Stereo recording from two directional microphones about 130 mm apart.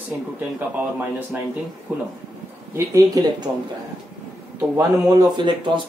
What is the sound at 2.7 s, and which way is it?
Speech, 25° right (ahead or behind).